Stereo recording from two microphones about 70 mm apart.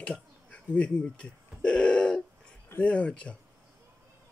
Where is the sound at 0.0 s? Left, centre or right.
Centre.